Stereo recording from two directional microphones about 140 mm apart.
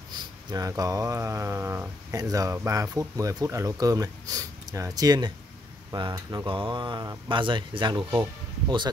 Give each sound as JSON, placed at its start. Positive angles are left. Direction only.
{"t": 0.1, "sound": "speech", "side_deg": -25}